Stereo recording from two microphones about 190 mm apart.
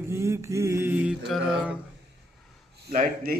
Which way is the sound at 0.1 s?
15° right (ahead or behind).